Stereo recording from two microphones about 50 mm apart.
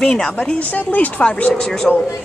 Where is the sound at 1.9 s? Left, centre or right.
Centre.